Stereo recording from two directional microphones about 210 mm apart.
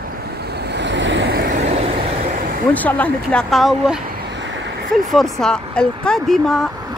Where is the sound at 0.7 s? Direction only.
55° right (ahead or behind).